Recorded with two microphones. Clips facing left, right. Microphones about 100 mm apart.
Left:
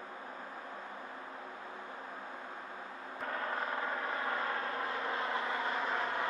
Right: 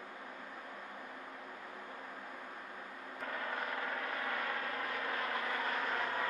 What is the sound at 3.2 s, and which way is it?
Vehicle, 35° left (ahead or behind).